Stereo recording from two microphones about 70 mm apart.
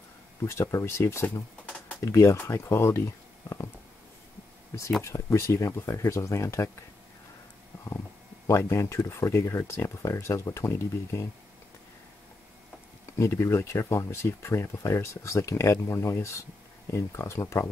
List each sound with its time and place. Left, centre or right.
0.5 s speech: left
3.4 s a sound: left
5.0 s speech: left
8.5 s speech: left
13.2 s speech: left